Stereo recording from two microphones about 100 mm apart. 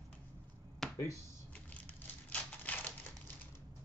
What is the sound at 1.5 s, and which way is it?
Crushing, 15° left (ahead or behind).